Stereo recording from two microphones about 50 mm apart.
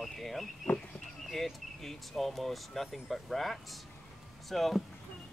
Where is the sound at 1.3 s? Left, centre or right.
Centre.